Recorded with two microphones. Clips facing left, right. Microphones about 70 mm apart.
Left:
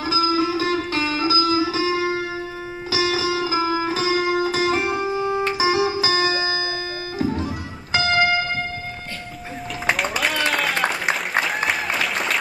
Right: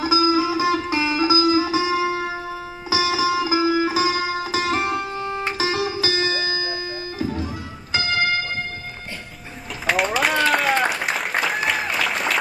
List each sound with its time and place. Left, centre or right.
0.0 s music: centre
5.9 s music: left
9.8 s a sound: centre
10.4 s applause: centre